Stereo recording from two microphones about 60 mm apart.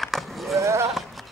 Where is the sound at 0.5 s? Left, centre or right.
Right.